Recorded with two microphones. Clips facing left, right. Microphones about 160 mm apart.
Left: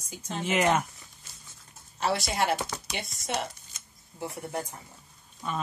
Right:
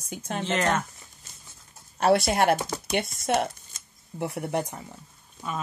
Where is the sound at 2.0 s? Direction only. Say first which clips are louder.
Right 7 dB; 55° right (ahead or behind).